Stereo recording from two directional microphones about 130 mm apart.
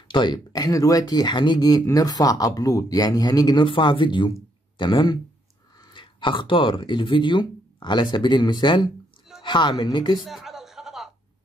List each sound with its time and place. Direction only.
0.1 s speech: 35° left (ahead or behind)
10.2 s music: centre (ahead or behind)